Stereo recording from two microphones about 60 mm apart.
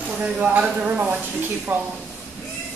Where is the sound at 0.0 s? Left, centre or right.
Centre.